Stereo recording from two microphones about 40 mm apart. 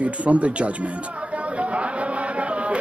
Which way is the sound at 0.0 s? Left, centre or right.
Right.